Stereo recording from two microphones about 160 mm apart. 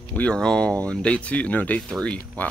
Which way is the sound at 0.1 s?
5° left (ahead or behind).